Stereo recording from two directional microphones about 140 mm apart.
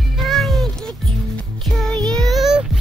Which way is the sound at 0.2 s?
Centre (ahead or behind).